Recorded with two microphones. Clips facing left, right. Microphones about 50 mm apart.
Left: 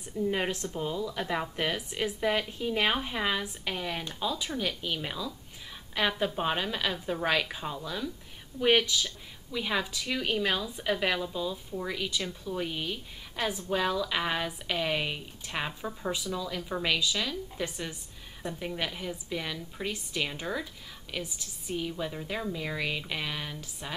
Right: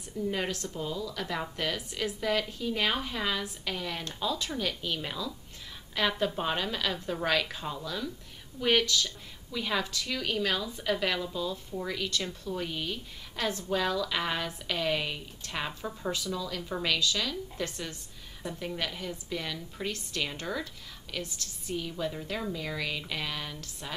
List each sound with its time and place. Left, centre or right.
0.2 s a woman's voice: left